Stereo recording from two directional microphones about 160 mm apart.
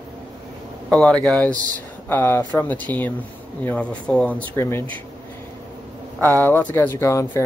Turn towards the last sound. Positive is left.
turn(degrees=15)  # may be behind; listen again after turning